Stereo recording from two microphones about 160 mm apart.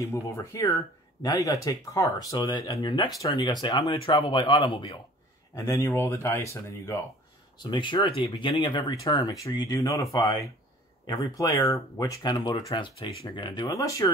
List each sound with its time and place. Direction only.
0.0 s speech: 20° left (ahead or behind); by 4.9 s 35° left (ahead or behind)
5.5 s speech: 20° left (ahead or behind)
7.5 s speech: 30° left (ahead or behind)